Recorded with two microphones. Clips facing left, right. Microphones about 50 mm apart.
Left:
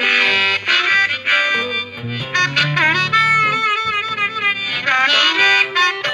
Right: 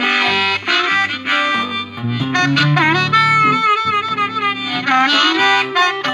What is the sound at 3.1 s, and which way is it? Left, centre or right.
Saxophone, left.